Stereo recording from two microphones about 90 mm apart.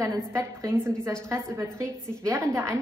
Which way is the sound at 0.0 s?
35° right (ahead or behind).